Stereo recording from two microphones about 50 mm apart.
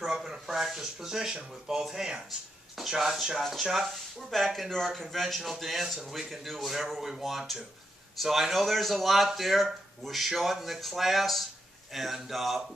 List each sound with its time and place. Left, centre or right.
0.0 s a man's voice: centre